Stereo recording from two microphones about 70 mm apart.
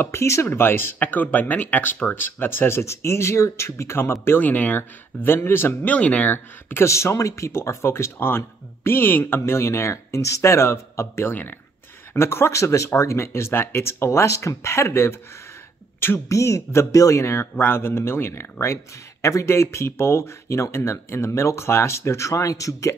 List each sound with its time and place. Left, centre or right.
0.0 s speech: left
0.9 s speech: left
5.9 s speech: left
16.3 s speech: left